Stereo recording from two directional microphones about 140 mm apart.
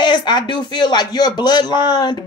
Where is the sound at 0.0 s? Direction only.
30° left (ahead or behind).